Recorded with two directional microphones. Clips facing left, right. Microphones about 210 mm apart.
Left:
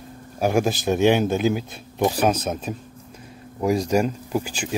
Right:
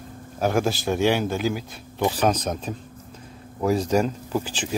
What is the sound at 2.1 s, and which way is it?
A man's voice, 10° left (ahead or behind).